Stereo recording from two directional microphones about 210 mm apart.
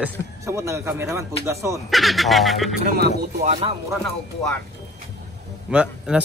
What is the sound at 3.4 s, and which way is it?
Speech, 30° right (ahead or behind).